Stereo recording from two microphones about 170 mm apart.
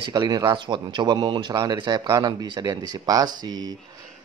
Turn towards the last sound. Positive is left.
turn(degrees=-25)  # may be behind; listen again after turning